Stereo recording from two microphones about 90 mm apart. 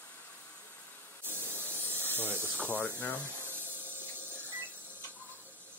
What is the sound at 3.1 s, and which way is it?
Printer, 25° right (ahead or behind).